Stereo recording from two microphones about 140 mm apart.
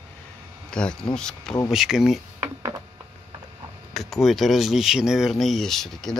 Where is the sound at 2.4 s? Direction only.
25° right (ahead or behind).